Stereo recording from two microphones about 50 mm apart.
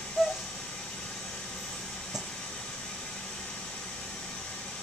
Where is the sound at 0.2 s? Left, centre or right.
Centre.